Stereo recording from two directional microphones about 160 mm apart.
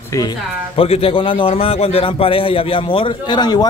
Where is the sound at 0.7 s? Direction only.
35° left (ahead or behind).